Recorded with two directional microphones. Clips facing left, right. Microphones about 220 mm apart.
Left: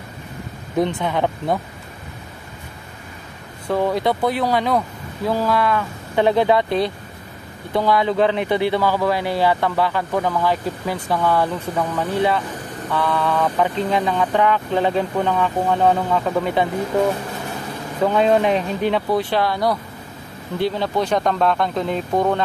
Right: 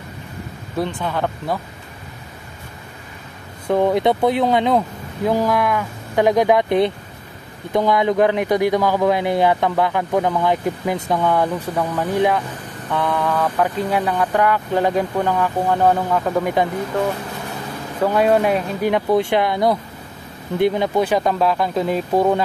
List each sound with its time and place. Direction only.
0.7 s speech: 20° left (ahead or behind)
3.6 s speech: 20° right (ahead or behind)
18.0 s speech: 5° right (ahead or behind)